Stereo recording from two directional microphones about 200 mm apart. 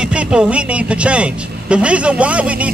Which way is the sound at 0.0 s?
5° right (ahead or behind).